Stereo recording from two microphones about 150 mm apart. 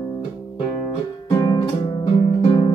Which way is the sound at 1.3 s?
25° left (ahead or behind).